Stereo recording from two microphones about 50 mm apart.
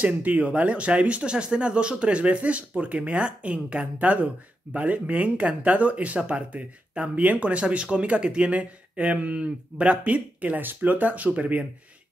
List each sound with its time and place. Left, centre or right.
0.0 s speech: right